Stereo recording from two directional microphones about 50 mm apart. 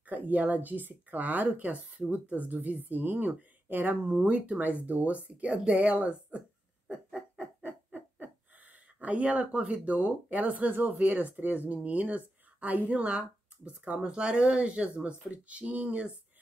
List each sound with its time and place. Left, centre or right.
0.0 s speech: right
4.1 s speech: right
7.6 s a sound: right
11.0 s speech: right